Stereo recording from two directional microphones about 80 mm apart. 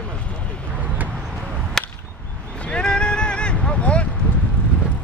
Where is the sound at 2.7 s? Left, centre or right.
Centre.